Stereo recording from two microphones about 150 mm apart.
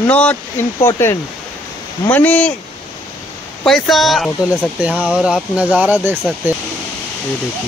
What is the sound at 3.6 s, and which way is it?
Speech, centre (ahead or behind).